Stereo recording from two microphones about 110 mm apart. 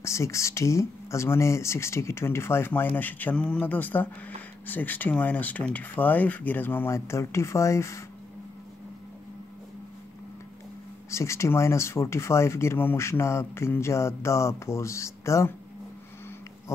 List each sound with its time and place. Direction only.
0.0 s speech: 25° left (ahead or behind)
11.1 s speech: 25° left (ahead or behind)